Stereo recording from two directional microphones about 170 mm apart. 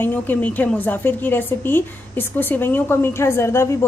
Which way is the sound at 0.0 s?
10° left (ahead or behind).